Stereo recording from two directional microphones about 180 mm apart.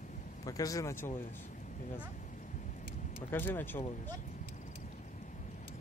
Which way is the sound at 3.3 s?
10° left (ahead or behind).